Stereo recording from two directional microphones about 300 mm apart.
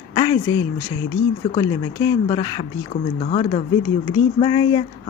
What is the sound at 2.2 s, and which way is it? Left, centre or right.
Speech, centre.